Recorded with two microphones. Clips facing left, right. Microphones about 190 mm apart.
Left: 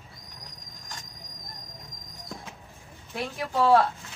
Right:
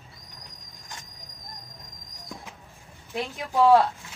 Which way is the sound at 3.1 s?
15° right (ahead or behind).